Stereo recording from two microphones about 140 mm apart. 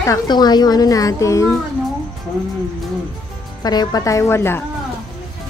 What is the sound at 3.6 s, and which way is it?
Speech, 30° left (ahead or behind).